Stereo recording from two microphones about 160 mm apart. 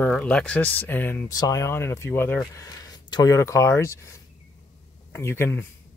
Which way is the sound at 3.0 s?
25° left (ahead or behind).